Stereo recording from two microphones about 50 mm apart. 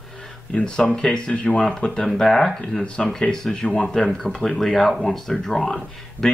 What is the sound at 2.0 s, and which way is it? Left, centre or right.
Speech, centre.